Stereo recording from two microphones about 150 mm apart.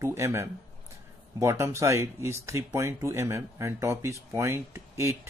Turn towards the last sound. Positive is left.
turn(degrees=-20)  # may be behind; listen again after turning